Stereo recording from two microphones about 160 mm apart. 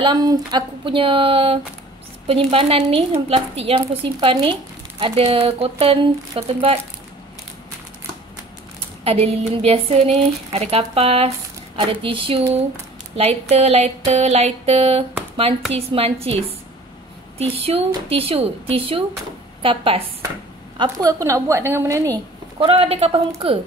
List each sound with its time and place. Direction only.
0.0 s speech: 25° right (ahead or behind)
9.0 s speech: 40° right (ahead or behind)
17.4 s a woman's voice: 40° right (ahead or behind); by 22.2 s 20° right (ahead or behind)
22.6 s speech: 40° right (ahead or behind)